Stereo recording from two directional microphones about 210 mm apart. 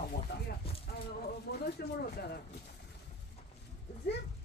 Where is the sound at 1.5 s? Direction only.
50° left (ahead or behind).